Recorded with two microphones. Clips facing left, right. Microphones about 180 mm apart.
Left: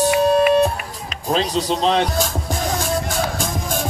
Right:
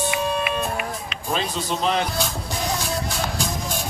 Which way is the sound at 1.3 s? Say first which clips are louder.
Left 6 dB; 30° left (ahead or behind).